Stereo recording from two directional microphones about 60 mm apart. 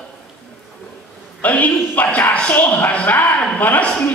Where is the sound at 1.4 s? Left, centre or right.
Left.